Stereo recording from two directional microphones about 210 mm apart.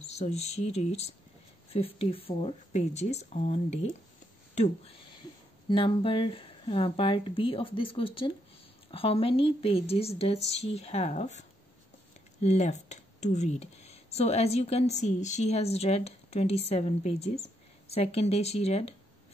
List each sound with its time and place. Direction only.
0.0 s speech: 30° left (ahead or behind)
5.7 s speech: 25° left (ahead or behind)